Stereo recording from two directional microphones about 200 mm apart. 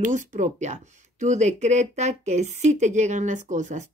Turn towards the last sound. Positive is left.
turn(degrees=-35)  # may be behind; listen again after turning